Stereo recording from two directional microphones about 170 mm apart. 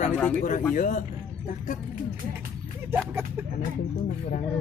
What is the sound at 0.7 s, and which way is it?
Speech, 50° left (ahead or behind).